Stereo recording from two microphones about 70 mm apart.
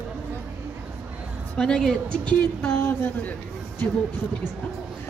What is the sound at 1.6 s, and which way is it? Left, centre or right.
Speech, centre.